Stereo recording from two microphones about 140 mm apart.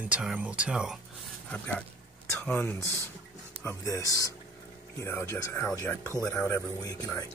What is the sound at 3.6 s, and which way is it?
Speech, 25° left (ahead or behind).